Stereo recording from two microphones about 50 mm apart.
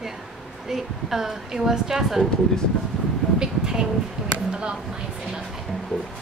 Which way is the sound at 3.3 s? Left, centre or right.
Centre.